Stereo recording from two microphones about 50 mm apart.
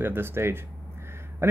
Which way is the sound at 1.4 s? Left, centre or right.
Right.